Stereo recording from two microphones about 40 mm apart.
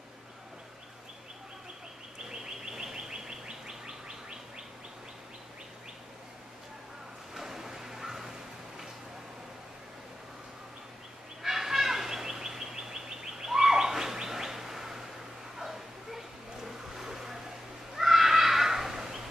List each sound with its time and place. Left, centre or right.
2.2 s bird: centre
7.3 s a sound: centre
11.4 s bird: centre
15.6 s a sound: centre
16.6 s vehicle: centre
17.9 s neigh: centre